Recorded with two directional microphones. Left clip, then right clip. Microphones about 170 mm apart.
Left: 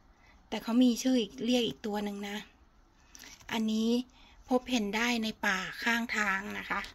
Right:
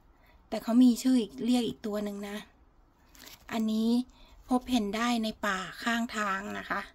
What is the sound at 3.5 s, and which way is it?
A woman's voice, 10° right (ahead or behind).